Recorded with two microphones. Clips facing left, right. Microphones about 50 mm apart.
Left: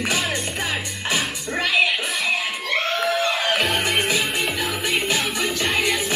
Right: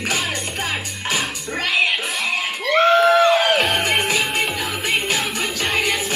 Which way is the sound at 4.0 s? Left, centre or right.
Centre.